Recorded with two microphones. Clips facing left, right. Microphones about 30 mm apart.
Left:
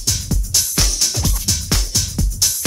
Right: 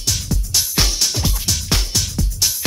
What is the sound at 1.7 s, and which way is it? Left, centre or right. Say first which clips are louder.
Music: right 1 dB; centre.